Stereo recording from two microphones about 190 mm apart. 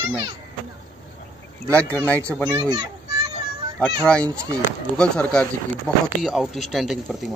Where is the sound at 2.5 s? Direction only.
20° right (ahead or behind).